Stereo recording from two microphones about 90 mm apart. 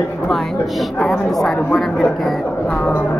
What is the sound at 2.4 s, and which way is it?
Music, 15° left (ahead or behind).